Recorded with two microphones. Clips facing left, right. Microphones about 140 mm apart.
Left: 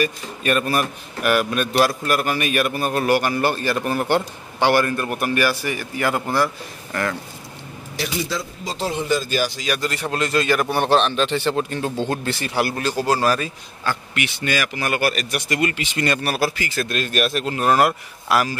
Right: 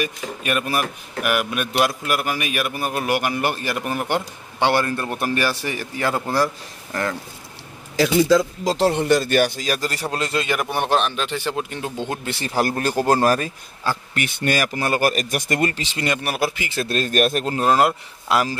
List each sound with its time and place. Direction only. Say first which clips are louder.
0.0 s a man's voice: left 3 dB; 10° right (ahead or behind)
8.2 s speech: right 10 dB; 90° right; by 9.5 s 65° right (ahead or behind)
9.6 s speech: even; 35° right (ahead or behind)
10.1 s a man's voice: left 4 dB; 25° right (ahead or behind)
12.4 s speech: right 1 dB; 35° right (ahead or behind)
16.1 s speech: even; 15° right (ahead or behind); by 17.6 s 45° right (ahead or behind)
17.6 s a man's voice: left 1 dB; 20° right (ahead or behind)